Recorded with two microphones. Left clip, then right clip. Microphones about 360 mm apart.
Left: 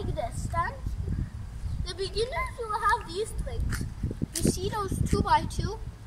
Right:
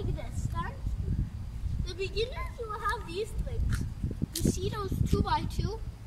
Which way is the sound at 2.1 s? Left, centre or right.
Centre.